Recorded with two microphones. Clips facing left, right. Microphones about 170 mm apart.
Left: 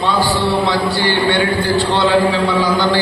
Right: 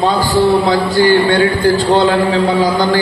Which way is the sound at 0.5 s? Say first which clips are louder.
Right 4 dB; 40° right (ahead or behind).